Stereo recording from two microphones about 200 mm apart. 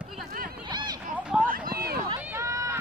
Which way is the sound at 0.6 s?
20° right (ahead or behind).